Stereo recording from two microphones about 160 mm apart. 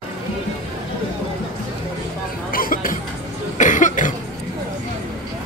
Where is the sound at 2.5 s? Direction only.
60° left (ahead or behind).